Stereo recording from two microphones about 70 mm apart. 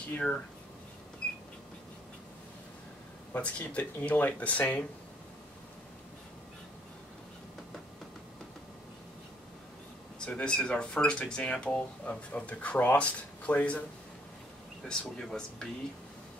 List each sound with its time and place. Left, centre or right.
3.3 s speech: centre
10.1 s speech: centre
14.8 s speech: centre